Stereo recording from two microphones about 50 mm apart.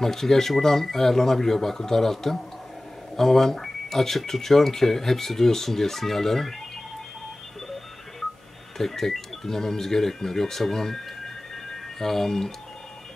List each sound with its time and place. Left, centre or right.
0.0 s speech: centre
8.7 s speech: centre